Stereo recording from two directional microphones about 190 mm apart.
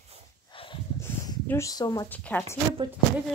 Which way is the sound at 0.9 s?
15° left (ahead or behind).